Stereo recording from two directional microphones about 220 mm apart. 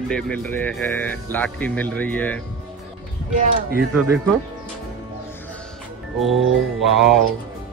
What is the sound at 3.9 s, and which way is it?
Speech, 10° right (ahead or behind).